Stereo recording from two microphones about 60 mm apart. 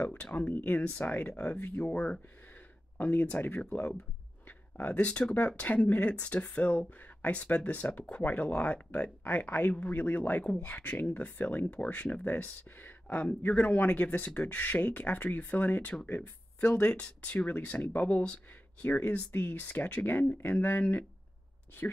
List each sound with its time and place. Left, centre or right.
0.0 s speech: left
4.5 s a sound: left
5.6 s speech: left